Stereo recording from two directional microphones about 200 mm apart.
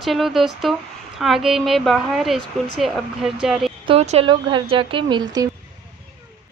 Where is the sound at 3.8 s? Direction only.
30° right (ahead or behind).